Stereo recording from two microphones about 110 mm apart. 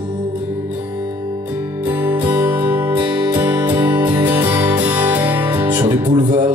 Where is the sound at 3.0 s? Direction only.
40° right (ahead or behind).